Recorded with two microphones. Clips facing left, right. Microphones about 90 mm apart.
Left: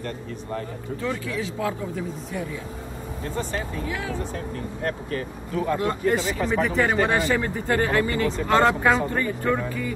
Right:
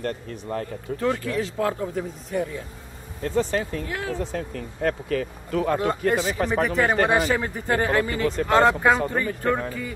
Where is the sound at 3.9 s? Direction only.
50° right (ahead or behind).